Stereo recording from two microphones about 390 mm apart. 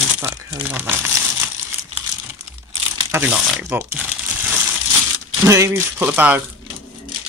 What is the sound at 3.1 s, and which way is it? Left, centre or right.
Speech, centre.